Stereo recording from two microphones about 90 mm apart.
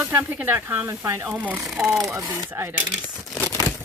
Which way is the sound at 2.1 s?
40° right (ahead or behind).